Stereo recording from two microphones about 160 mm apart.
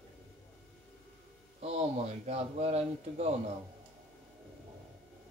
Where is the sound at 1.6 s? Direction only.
40° right (ahead or behind).